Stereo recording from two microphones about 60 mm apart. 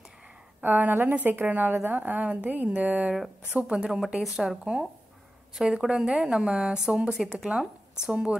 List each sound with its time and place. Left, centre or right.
0.6 s a woman's voice: right; by 4.6 s centre
5.6 s a woman's voice: centre
7.5 s a woman's voice: right